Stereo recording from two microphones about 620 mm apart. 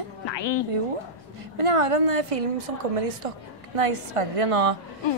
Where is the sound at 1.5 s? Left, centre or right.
Right.